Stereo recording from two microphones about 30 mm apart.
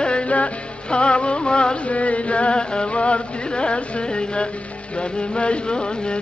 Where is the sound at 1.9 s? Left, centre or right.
Left.